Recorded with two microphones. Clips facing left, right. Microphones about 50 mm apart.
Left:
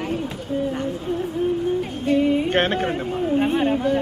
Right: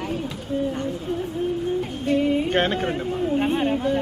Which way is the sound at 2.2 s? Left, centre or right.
Centre.